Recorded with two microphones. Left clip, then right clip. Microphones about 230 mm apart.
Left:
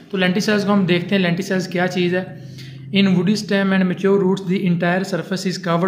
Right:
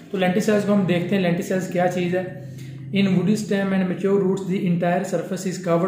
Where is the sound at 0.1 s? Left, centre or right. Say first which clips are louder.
Left 2 dB; left.